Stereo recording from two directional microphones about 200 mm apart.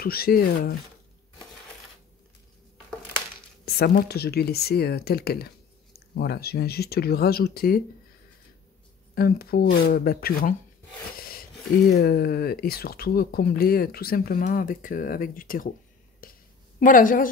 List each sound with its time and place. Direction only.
0.0 s speech: 50° left (ahead or behind)
3.6 s speech: 50° left (ahead or behind)
9.1 s speech: 50° left (ahead or behind)
9.7 s speech: 70° left (ahead or behind)
9.9 s speech: 50° left (ahead or behind)
11.1 s a sound: 45° left (ahead or behind)
12.0 s speech: 50° left (ahead or behind)
16.2 s a sound: 45° left (ahead or behind)
16.8 s speech: 40° left (ahead or behind)